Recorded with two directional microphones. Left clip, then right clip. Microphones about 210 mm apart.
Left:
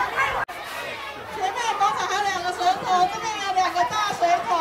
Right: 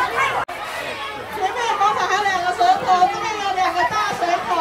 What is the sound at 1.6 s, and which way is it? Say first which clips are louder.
Chatter: right 4 dB; 55° left (ahead or behind).